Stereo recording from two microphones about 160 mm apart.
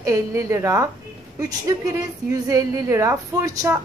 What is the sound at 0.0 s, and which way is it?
A woman's voice, 20° right (ahead or behind).